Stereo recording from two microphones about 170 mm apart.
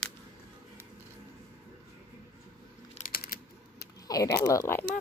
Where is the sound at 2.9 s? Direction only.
55° left (ahead or behind).